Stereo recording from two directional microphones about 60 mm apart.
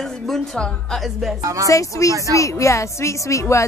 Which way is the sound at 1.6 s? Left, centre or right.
Left.